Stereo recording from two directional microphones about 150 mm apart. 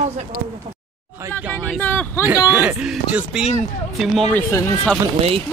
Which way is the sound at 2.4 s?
10° right (ahead or behind).